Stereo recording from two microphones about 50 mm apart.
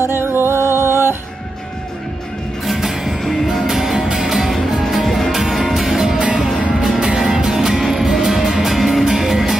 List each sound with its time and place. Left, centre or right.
0.0 s music: right
2.6 s music: centre
6.1 s music: centre